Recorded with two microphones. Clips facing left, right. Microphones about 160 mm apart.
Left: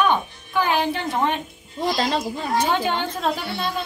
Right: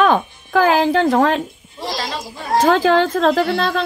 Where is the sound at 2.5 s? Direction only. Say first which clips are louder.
Right 9 dB; 90° right.